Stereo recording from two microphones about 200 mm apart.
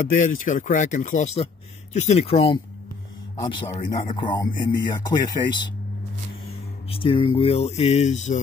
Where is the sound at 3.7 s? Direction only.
25° left (ahead or behind).